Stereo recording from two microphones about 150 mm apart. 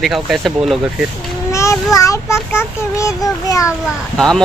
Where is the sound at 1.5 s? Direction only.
20° left (ahead or behind).